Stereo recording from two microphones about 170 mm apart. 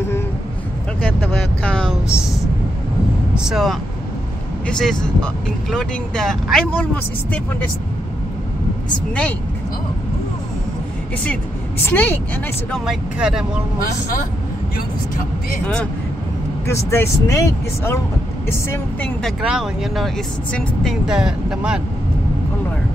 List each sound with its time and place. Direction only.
1.6 s music: 5° left (ahead or behind)
3.3 s speech: centre (ahead or behind)
11.8 s speech: 10° left (ahead or behind)
12.7 s speech: centre (ahead or behind)
15.6 s speech: 5° left (ahead or behind)
19.4 s speech: 5° right (ahead or behind)